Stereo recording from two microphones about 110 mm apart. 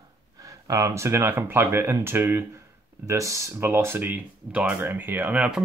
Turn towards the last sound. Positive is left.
turn(degrees=-10)  # may be behind; listen again after turning